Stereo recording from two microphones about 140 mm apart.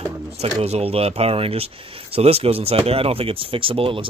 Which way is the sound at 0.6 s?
45° right (ahead or behind).